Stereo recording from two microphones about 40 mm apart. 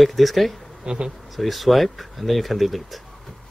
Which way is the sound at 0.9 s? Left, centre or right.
Right.